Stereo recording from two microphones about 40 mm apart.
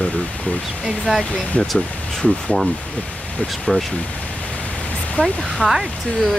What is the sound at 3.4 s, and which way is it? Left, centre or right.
Speech, centre.